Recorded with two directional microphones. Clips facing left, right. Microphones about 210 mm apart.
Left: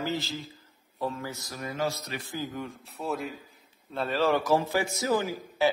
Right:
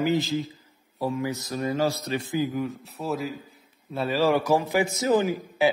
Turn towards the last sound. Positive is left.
turn(degrees=-20)  # may be behind; listen again after turning